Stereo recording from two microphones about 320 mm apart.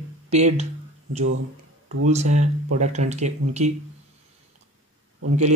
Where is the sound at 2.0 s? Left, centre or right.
Right.